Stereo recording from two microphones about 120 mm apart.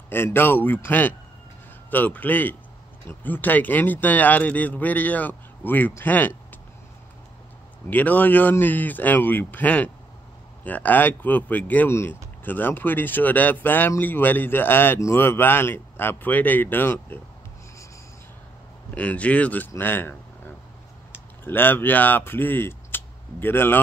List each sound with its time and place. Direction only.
0.1 s speech: 20° left (ahead or behind)
7.9 s speech: 15° left (ahead or behind)
18.9 s speech: 10° left (ahead or behind)